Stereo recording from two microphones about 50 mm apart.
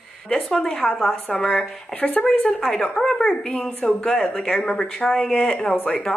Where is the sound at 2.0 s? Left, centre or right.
Left.